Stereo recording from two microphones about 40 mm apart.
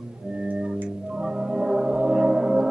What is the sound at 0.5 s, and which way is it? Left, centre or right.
Organ, centre.